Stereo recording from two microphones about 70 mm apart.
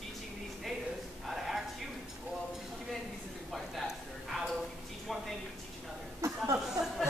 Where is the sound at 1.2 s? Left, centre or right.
Centre.